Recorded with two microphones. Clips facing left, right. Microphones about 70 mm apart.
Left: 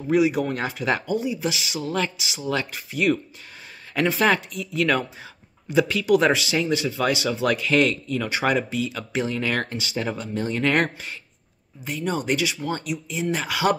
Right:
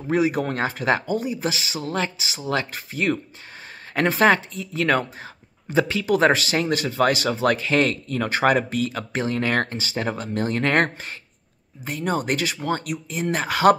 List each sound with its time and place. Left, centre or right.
0.1 s speech: right